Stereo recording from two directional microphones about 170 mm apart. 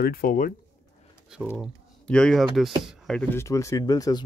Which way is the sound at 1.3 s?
5° right (ahead or behind).